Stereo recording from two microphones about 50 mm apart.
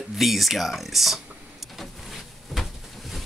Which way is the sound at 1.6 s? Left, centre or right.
Centre.